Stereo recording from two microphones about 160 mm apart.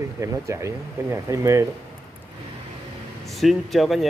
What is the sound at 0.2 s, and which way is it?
Speech, 20° right (ahead or behind).